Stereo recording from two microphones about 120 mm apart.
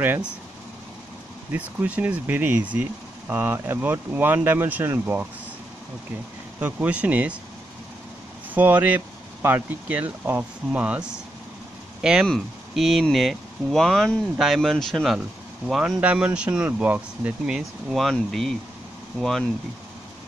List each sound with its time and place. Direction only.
0.0 s speech: 15° right (ahead or behind)
1.5 s speech: 15° right (ahead or behind)
6.6 s speech: 10° right (ahead or behind)
8.5 s speech: 15° right (ahead or behind); by 19.4 s centre (ahead or behind)